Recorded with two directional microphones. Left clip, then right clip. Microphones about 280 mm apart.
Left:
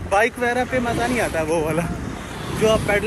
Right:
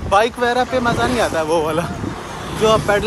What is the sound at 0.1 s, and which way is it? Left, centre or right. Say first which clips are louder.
Speech: right 4 dB; centre.